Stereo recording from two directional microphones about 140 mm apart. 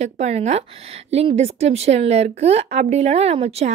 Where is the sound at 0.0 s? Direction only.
55° right (ahead or behind).